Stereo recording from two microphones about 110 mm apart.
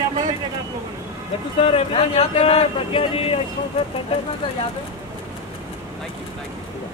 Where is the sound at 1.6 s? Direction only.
60° left (ahead or behind).